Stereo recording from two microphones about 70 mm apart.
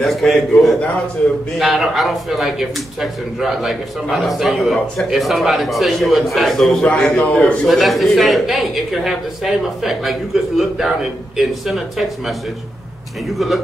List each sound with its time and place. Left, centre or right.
0.0 s speech: centre
6.8 s a man's voice: centre
7.6 s speech: centre